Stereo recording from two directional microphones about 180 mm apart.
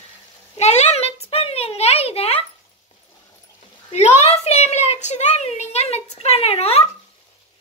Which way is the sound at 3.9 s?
40° left (ahead or behind).